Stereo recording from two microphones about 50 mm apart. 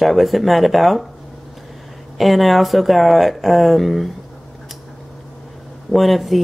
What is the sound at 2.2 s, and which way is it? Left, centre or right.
Speech, centre.